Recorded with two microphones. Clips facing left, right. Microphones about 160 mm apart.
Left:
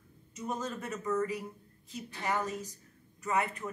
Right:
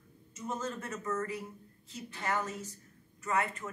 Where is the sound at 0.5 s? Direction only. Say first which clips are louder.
Left 1 dB; 15° left (ahead or behind).